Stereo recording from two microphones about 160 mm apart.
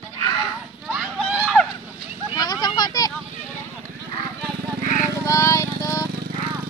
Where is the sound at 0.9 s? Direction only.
5° right (ahead or behind).